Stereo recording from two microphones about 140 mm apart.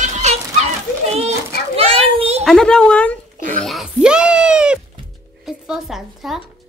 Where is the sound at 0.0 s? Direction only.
55° right (ahead or behind).